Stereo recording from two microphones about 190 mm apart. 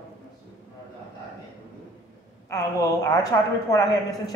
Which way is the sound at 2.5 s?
15° left (ahead or behind).